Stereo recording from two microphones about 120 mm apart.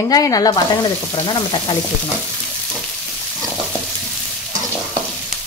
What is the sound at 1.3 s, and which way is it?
Speech, 40° left (ahead or behind).